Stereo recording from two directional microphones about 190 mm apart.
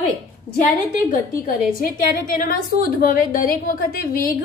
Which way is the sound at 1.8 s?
50° left (ahead or behind).